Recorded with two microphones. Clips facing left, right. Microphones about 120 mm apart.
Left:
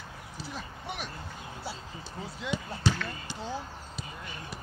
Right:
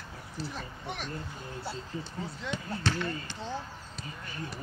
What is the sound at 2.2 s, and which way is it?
Speech, 10° left (ahead or behind).